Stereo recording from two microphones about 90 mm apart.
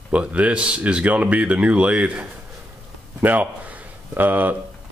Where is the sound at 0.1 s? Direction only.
15° right (ahead or behind).